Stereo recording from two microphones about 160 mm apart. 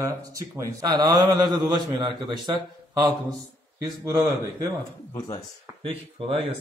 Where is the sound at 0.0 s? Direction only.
20° right (ahead or behind).